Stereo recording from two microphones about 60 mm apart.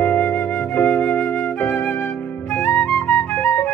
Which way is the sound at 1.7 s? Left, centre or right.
Left.